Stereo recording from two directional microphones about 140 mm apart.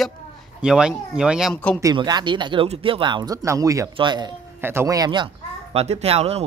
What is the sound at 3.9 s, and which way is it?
Speech, 35° right (ahead or behind).